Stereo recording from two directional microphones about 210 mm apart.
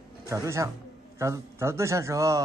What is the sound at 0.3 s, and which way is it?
A man's voice, 15° right (ahead or behind).